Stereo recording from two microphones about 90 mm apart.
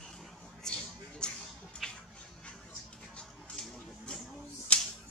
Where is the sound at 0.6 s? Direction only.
10° left (ahead or behind).